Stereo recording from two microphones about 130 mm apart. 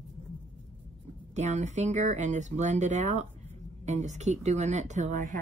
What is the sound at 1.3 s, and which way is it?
Speech, 65° right (ahead or behind).